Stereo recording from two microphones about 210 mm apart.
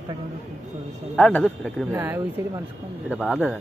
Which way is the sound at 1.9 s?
10° right (ahead or behind).